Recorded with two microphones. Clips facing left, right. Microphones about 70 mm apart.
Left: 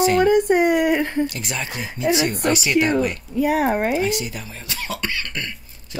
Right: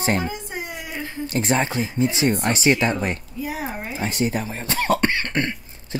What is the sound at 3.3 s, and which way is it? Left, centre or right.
Speech, left.